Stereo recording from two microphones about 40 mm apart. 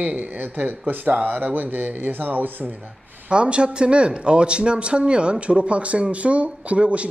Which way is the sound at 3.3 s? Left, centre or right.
Right.